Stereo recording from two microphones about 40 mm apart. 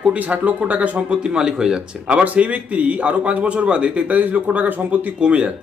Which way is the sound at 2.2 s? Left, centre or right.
Right.